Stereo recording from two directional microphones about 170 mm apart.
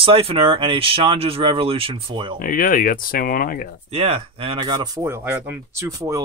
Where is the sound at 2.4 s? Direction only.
55° left (ahead or behind).